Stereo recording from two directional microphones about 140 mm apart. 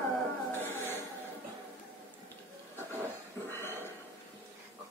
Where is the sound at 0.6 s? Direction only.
15° left (ahead or behind).